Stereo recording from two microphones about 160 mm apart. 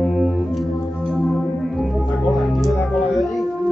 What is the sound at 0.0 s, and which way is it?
Music, centre (ahead or behind).